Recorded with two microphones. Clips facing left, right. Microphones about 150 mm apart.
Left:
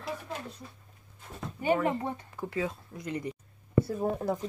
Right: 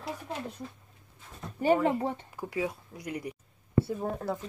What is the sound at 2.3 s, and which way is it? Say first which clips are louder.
Speech: even; 10° right (ahead or behind).